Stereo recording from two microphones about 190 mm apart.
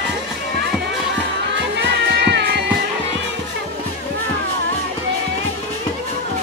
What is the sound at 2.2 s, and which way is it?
Music, 60° right (ahead or behind).